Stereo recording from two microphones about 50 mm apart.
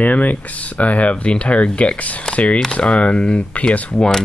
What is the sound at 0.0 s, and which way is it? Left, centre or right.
Speech, left.